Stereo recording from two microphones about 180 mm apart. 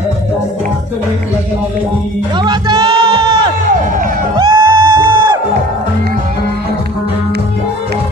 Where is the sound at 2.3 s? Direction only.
25° right (ahead or behind).